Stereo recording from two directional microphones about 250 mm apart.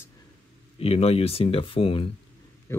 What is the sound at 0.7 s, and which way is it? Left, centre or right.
Speech, left.